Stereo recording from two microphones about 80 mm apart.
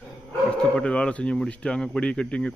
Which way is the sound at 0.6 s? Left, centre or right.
Centre.